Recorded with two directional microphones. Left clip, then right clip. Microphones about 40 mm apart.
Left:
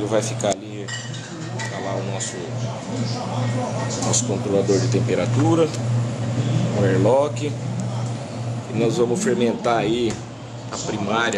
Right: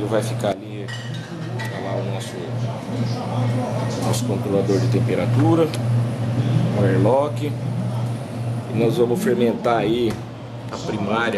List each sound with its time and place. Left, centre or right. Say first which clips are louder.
0.0 s speech: even; centre
3.3 s speech: right 2 dB; centre
8.7 s speech: right 1 dB; centre
10.9 s speech: even; centre